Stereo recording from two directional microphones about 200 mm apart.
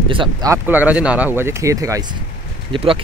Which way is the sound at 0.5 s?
10° right (ahead or behind).